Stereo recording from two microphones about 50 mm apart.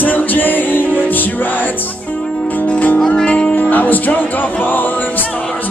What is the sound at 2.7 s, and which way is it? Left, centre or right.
Music, left.